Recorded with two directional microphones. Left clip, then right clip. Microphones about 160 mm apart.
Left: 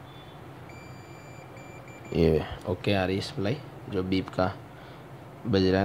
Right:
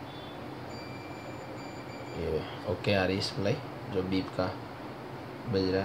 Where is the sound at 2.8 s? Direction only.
60° left (ahead or behind).